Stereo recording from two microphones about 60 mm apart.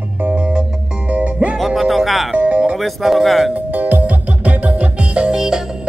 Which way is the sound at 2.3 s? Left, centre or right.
Right.